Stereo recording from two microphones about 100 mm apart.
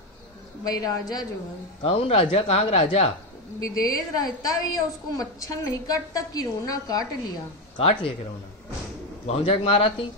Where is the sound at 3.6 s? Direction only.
35° left (ahead or behind).